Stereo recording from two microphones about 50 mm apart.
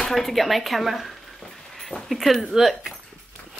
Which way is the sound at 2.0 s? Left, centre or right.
Centre.